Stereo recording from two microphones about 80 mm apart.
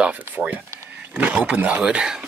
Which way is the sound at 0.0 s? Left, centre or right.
Centre.